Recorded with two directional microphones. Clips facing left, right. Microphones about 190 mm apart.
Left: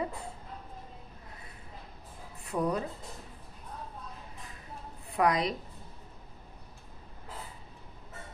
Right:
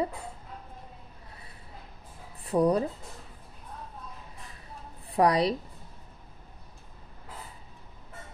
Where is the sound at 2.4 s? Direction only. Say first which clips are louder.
Right 7 dB; 35° right (ahead or behind).